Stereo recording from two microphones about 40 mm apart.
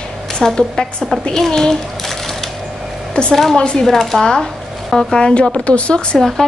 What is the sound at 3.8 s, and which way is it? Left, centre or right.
Speech, centre.